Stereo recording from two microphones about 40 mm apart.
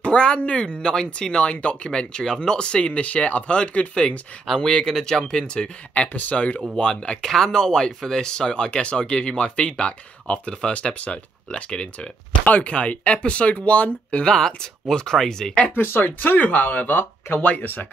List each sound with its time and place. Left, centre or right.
0.0 s speech: left
0.8 s speech: centre
1.4 s speech: left
1.9 s speech: centre
4.6 s speech: centre
6.1 s speech: left
6.8 s speech: left
14.2 s speech: centre
15.8 s speech: left
16.2 s speech: left